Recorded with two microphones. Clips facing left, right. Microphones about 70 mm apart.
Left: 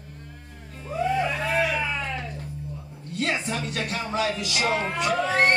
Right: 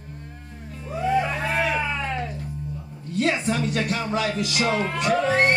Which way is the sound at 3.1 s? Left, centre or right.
Right.